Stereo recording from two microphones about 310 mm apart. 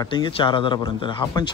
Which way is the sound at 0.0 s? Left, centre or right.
Centre.